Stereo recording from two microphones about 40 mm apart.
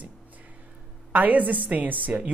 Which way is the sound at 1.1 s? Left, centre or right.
Right.